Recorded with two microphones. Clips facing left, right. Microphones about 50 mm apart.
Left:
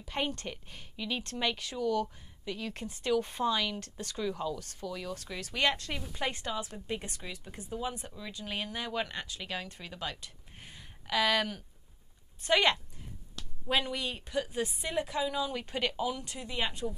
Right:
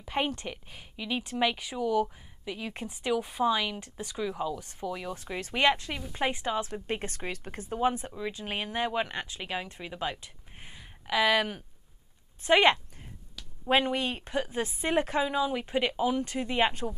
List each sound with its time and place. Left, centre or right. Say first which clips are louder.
0.1 s a woman's voice: right 4 dB; centre
6.1 s speech: right 6 dB; right
6.9 s speech: right 5 dB; right
8.1 s a woman's voice: right 5 dB; right
15.2 s speech: right 4 dB; right
16.3 s a woman's voice: right 8 dB; right